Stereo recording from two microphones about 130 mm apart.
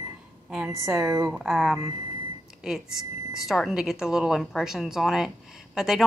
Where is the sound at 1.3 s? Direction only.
Centre (ahead or behind).